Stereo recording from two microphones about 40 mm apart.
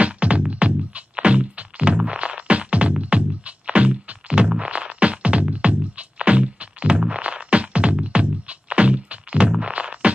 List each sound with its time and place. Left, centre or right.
0.0 s music: right